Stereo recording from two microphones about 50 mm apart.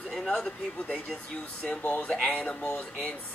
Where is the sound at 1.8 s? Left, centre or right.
Left.